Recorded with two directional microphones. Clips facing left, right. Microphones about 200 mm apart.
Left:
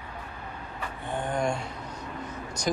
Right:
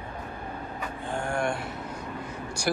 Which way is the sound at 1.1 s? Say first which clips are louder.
Even; 15° left (ahead or behind).